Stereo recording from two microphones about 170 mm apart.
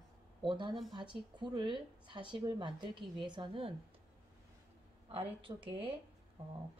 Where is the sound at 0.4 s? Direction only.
30° right (ahead or behind).